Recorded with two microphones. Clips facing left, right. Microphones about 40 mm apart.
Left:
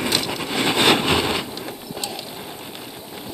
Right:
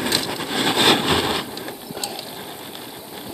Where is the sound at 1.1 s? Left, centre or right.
Right.